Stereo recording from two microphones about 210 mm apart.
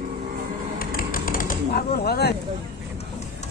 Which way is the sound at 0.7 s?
45° left (ahead or behind).